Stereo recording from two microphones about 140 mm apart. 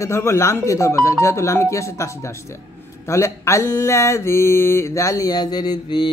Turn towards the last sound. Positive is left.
turn(degrees=30)  # may be behind; listen again after turning